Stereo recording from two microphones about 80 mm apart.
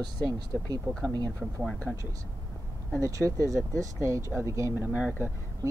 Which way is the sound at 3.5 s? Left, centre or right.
Right.